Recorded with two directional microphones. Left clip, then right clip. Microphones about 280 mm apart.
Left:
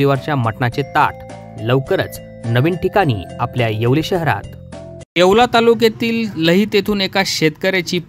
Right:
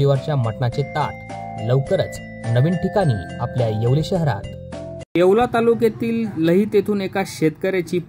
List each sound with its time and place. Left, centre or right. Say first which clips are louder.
0.0 s speech: left 4 dB; left
5.1 s speech: left 4 dB; left